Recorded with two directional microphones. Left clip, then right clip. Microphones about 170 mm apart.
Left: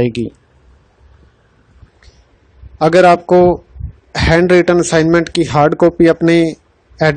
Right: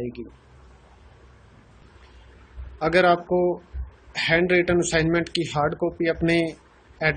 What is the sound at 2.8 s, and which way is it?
Speech, 55° left (ahead or behind).